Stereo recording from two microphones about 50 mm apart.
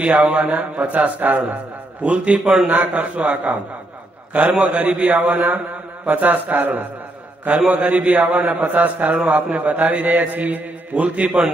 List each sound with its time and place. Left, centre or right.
0.0 s a man's voice: right